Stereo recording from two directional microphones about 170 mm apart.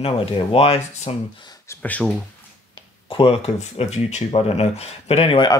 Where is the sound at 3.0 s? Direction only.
30° left (ahead or behind).